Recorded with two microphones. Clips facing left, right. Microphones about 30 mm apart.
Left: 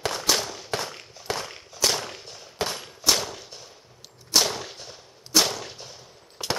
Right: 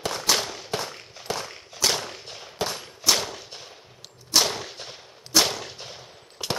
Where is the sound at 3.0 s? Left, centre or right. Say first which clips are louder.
Even; centre.